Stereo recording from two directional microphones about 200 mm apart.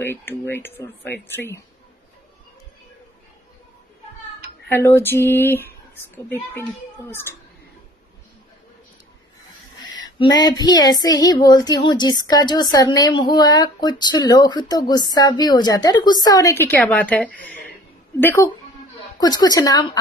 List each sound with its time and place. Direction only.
0.0 s speech: 10° left (ahead or behind)
4.6 s speech: 10° left (ahead or behind)
10.0 s female singing: 20° left (ahead or behind)
18.2 s speech: 15° left (ahead or behind)
19.1 s female singing: 20° left (ahead or behind)